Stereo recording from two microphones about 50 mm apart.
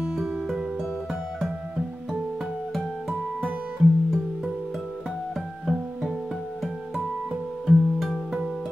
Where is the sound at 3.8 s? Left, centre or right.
Centre.